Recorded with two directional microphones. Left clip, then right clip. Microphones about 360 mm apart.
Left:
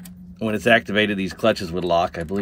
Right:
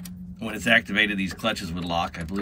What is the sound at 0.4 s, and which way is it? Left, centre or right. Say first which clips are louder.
Speech: left 4 dB; centre.